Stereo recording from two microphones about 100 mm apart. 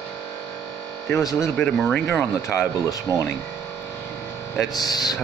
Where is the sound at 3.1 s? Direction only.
30° left (ahead or behind).